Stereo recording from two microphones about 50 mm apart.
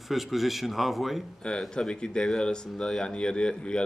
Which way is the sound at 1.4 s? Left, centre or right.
Centre.